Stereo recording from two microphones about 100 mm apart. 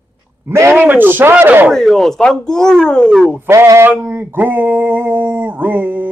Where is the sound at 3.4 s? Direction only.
30° right (ahead or behind).